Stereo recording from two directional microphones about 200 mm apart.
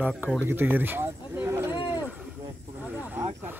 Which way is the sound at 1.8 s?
20° left (ahead or behind).